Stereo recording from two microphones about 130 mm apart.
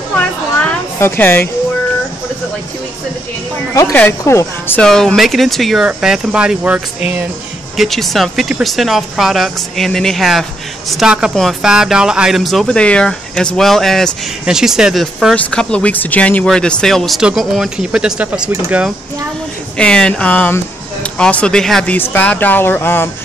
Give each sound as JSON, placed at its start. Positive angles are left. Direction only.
{"t": 0.2, "sound": "a sound", "side_deg": 10}
{"t": 0.9, "sound": "speech", "side_deg": 15}
{"t": 4.2, "sound": "speech", "side_deg": 20}
{"t": 4.8, "sound": "speech", "side_deg": 5}
{"t": 15.3, "sound": "speech", "side_deg": 10}
{"t": 19.8, "sound": "speech", "side_deg": 5}
{"t": 21.9, "sound": "speech", "side_deg": 15}